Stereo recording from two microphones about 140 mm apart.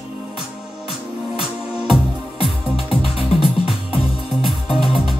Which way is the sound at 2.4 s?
40° left (ahead or behind).